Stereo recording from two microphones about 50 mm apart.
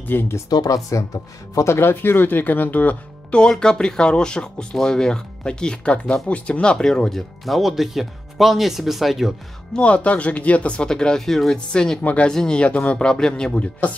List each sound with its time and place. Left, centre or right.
0.0 s speech: left
1.5 s speech: left
3.3 s speech: centre
9.8 s speech: left
10.8 s speech: centre
12.0 s speech: left
12.3 s speech: centre
13.1 s speech: centre
13.6 s speech: left